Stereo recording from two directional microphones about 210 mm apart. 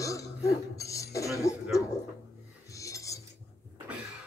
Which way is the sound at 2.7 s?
15° left (ahead or behind).